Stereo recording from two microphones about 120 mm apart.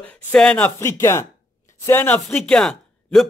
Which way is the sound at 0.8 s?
20° left (ahead or behind).